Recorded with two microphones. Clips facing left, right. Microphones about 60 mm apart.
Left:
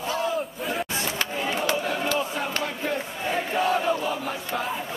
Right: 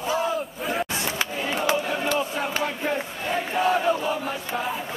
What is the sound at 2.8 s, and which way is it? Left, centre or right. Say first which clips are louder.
Battle cry: right 1 dB; centre.